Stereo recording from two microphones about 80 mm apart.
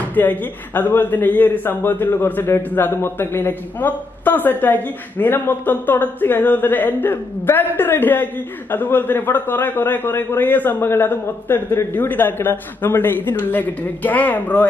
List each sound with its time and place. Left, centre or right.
0.1 s a man's voice: left